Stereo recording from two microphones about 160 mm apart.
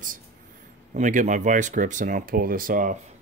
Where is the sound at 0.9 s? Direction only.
50° right (ahead or behind).